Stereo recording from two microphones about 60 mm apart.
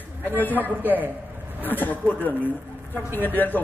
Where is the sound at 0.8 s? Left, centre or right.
Right.